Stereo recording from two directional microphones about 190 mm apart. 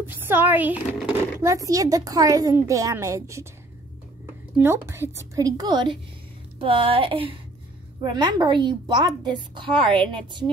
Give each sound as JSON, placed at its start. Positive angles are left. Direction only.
{"t": 0.0, "sound": "a woman's voice", "side_deg": -10}
{"t": 4.6, "sound": "a woman's voice", "side_deg": -15}